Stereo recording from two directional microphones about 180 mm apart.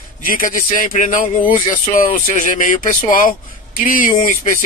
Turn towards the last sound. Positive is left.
turn(degrees=45)  # may be behind; listen again after turning